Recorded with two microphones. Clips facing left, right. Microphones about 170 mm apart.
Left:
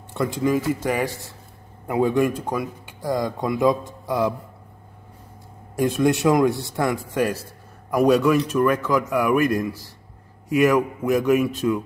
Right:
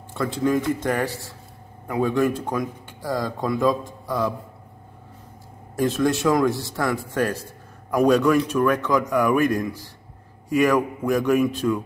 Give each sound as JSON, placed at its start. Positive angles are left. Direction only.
{"t": 0.1, "sound": "a man's voice", "side_deg": 20}
{"t": 0.4, "sound": "a man's voice", "side_deg": 5}
{"t": 4.0, "sound": "music", "side_deg": 20}
{"t": 5.8, "sound": "a man's voice", "side_deg": 15}